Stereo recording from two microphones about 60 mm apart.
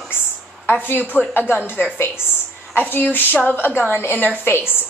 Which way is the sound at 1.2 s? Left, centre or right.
Centre.